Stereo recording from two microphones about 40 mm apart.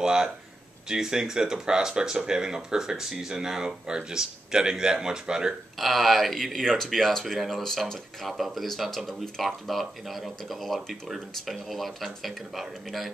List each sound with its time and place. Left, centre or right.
0.0 s speech: centre
5.8 s speech: centre